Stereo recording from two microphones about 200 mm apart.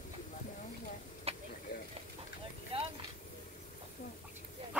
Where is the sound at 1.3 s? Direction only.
30° right (ahead or behind).